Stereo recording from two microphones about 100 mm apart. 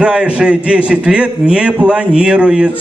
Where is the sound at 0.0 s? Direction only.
10° right (ahead or behind).